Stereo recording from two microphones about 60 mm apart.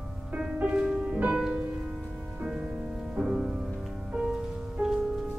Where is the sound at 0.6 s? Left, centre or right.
Centre.